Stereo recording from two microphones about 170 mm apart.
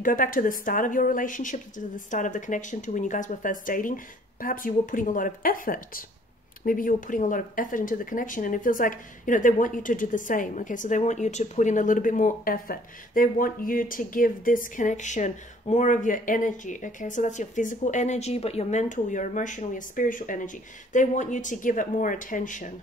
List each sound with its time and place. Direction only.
0.0 s speech: 55° left (ahead or behind)